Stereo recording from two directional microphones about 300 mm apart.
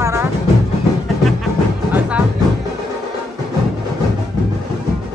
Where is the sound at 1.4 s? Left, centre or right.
Centre.